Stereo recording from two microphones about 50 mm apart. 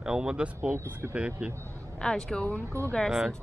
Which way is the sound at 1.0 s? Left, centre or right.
Right.